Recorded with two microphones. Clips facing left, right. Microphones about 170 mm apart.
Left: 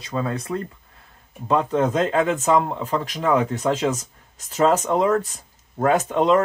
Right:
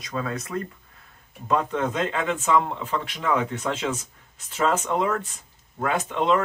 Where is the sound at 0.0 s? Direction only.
30° left (ahead or behind).